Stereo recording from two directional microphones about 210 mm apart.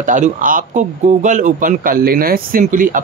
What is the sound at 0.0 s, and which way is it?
Speech, 40° right (ahead or behind).